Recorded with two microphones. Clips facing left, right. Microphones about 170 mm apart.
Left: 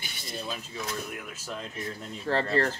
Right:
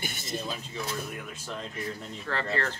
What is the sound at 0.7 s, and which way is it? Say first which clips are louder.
Speech: right 1 dB; 5° left (ahead or behind).